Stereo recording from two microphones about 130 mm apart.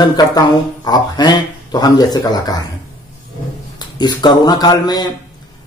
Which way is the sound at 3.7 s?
35° left (ahead or behind).